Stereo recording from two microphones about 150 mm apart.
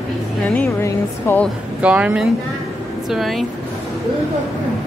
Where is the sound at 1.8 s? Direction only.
10° right (ahead or behind).